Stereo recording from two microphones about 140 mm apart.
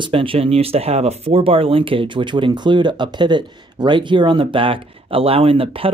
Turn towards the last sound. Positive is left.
turn(degrees=-40)  # may be behind; listen again after turning